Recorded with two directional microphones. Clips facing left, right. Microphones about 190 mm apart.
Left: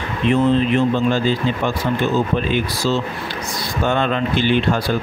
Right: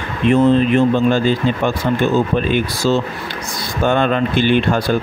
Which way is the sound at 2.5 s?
50° right (ahead or behind).